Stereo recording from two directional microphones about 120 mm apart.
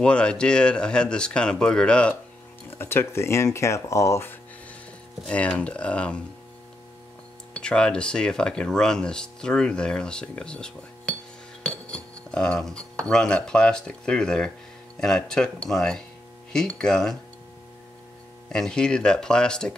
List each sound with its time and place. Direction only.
0.0 s speech: 10° left (ahead or behind)
2.8 s speech: 20° left (ahead or behind)
5.2 s speech: 10° left (ahead or behind)
7.5 s speech: 5° left (ahead or behind)
18.5 s speech: 5° left (ahead or behind)